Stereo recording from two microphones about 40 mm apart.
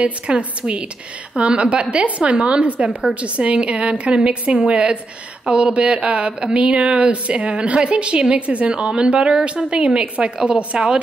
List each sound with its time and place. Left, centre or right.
0.0 s a woman's voice: right